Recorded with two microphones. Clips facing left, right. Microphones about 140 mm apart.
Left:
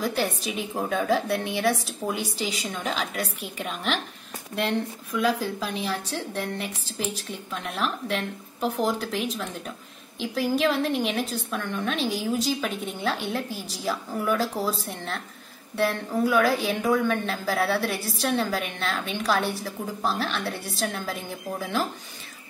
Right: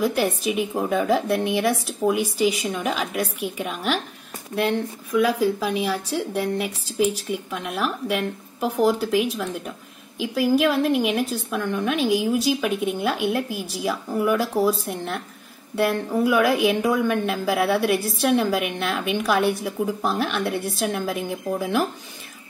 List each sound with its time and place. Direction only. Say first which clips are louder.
0.0 s a woman's voice: right 5 dB; 10° right (ahead or behind)